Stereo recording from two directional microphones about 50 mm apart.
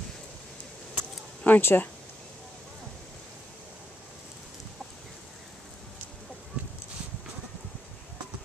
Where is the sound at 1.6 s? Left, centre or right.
Left.